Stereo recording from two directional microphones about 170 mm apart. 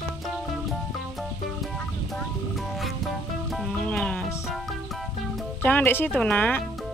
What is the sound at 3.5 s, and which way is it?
Music, centre (ahead or behind).